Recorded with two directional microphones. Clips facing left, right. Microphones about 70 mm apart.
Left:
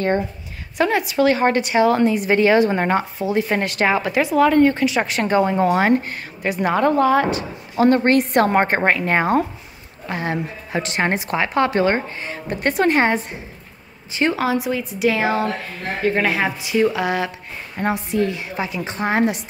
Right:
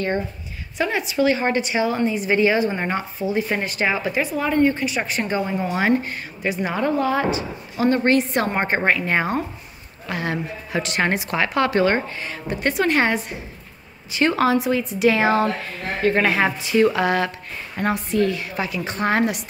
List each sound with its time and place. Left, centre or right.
0.7 s a woman's voice: left
3.2 s a woman's voice: left
8.8 s a woman's voice: left
10.0 s a woman's voice: left
12.5 s a woman's voice: left
14.3 s speech: centre
17.7 s a woman's voice: centre